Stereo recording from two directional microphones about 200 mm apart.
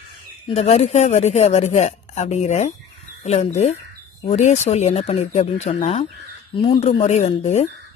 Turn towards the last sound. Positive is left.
turn(degrees=35)  # may be behind; listen again after turning